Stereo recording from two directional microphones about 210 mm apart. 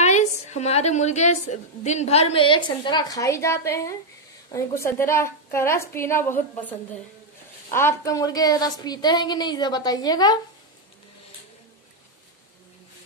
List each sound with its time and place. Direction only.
0.0 s a woman's voice: 35° left (ahead or behind); by 6.7 s 10° left (ahead or behind)
7.7 s a woman's voice: 15° left (ahead or behind)